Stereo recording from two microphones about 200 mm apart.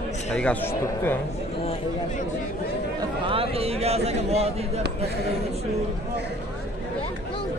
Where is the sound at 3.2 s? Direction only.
30° right (ahead or behind).